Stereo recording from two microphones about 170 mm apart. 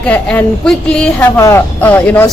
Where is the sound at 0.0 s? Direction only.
10° left (ahead or behind).